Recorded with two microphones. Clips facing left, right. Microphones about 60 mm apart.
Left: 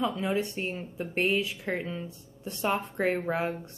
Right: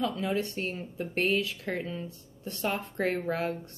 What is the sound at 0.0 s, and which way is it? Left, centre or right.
A woman's voice, centre.